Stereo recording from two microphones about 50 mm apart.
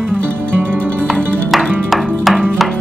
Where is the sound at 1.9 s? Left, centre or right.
Centre.